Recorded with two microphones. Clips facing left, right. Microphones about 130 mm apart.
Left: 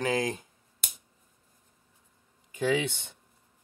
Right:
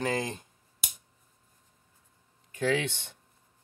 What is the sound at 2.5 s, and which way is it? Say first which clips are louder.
Speech: left 1 dB; 10° left (ahead or behind).